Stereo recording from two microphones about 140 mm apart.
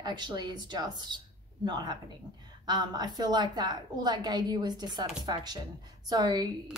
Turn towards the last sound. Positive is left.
turn(degrees=-30)  # may be behind; listen again after turning